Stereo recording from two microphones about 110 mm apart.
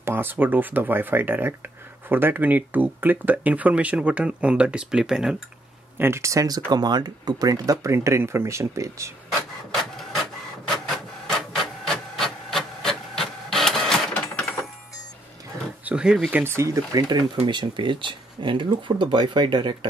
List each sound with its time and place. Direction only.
0.0 s speech: 20° right (ahead or behind)
5.9 s speech: 25° right (ahead or behind)
11.2 s printer: centre (ahead or behind)
14.1 s a sound: 10° left (ahead or behind)
15.8 s speech: 10° right (ahead or behind); by 17.2 s 30° right (ahead or behind)
17.5 s speech: 45° right (ahead or behind)